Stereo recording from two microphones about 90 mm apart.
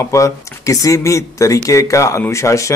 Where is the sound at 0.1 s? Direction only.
35° left (ahead or behind).